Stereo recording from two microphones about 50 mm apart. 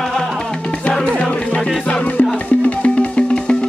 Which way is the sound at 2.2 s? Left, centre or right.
Left.